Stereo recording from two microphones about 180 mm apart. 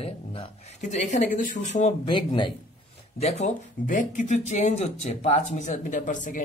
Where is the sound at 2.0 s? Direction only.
25° left (ahead or behind).